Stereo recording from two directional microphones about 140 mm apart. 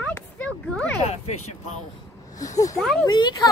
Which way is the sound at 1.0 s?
50° left (ahead or behind).